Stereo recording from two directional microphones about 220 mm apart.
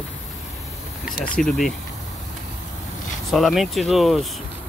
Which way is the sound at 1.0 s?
40° left (ahead or behind).